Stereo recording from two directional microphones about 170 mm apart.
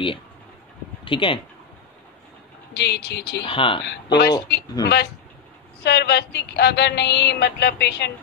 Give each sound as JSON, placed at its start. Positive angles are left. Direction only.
{"t": 1.0, "sound": "speech", "side_deg": 30}
{"t": 2.7, "sound": "speech", "side_deg": 75}
{"t": 3.4, "sound": "speech", "side_deg": 30}
{"t": 3.8, "sound": "music", "side_deg": 80}
{"t": 4.8, "sound": "speech", "side_deg": 25}
{"t": 5.9, "sound": "music", "side_deg": 75}